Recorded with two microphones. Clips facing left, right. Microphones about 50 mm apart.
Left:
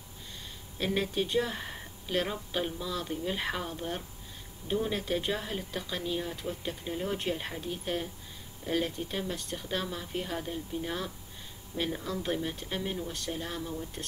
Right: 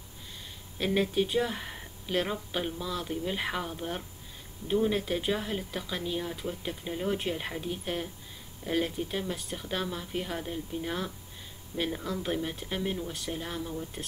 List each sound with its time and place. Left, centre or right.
0.7 s speech: centre